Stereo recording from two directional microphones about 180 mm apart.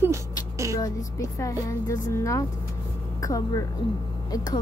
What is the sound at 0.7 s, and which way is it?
A woman's voice, 20° left (ahead or behind).